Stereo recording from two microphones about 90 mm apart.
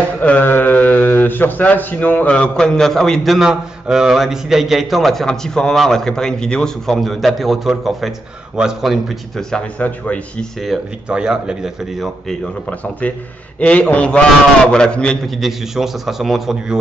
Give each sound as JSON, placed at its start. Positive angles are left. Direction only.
{"t": 0.2, "sound": "a man's voice", "side_deg": 20}
{"t": 9.5, "sound": "a man's voice", "side_deg": 15}
{"t": 11.1, "sound": "a man's voice", "side_deg": -10}
{"t": 13.0, "sound": "a man's voice", "side_deg": 15}
{"t": 15.2, "sound": "a man's voice", "side_deg": -5}